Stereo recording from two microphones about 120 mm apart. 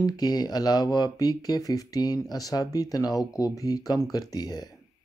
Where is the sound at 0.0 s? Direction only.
35° left (ahead or behind).